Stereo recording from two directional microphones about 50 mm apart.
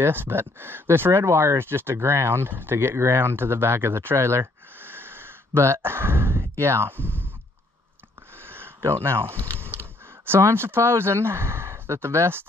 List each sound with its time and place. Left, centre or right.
0.0 s speech: right
1.2 s speech: right
1.6 s speech: right
4.7 s a sound: right
5.8 s speech: right
8.5 s speech: right